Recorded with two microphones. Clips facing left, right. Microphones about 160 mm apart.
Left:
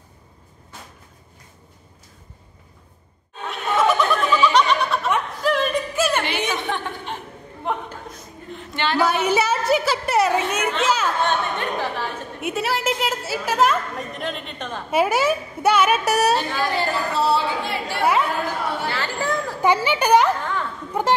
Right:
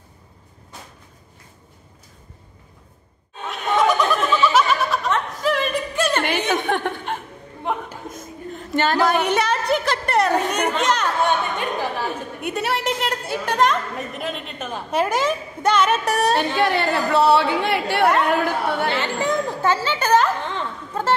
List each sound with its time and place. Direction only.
3.4 s laughter: centre (ahead or behind)
5.4 s music: centre (ahead or behind)
6.2 s a sound: 50° right (ahead or behind)
9.2 s a woman's voice: 5° left (ahead or behind)
11.2 s speech: 15° right (ahead or behind)
12.4 s a woman's voice: centre (ahead or behind)
14.9 s a woman's voice: 10° left (ahead or behind)
16.5 s a woman's voice: 65° right (ahead or behind)
18.9 s speech: 20° right (ahead or behind)
19.6 s a woman's voice: 15° left (ahead or behind)